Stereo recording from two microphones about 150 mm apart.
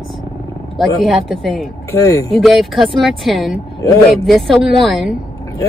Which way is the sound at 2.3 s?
Centre (ahead or behind).